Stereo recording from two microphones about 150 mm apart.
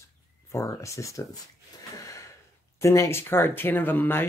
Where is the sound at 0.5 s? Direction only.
20° left (ahead or behind).